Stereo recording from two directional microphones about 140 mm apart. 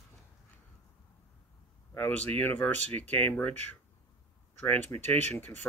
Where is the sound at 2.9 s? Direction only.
50° right (ahead or behind).